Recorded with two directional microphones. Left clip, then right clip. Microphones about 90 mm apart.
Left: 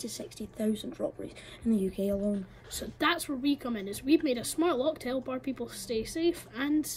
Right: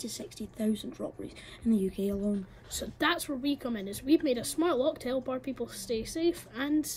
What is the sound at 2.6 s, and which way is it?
Speech, 15° right (ahead or behind).